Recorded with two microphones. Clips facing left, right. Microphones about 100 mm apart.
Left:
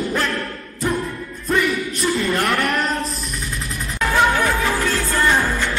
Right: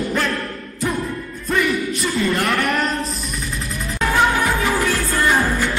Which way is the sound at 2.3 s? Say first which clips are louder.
Even; centre (ahead or behind).